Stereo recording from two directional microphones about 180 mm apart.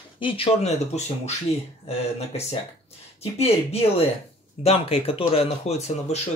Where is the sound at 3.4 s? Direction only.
35° left (ahead or behind).